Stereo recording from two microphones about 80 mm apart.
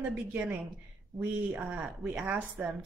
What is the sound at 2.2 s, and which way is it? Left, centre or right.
Speech, right.